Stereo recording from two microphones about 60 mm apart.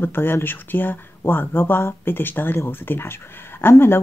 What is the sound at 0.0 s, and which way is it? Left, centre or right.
Speech, left.